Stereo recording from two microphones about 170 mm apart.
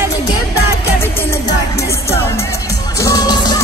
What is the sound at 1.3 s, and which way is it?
Music, 15° left (ahead or behind).